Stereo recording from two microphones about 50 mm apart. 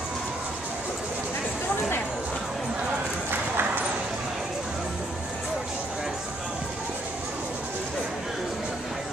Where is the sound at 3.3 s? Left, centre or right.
Right.